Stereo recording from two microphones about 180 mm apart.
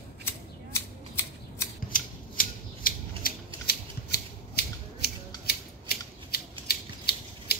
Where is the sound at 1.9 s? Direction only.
50° left (ahead or behind).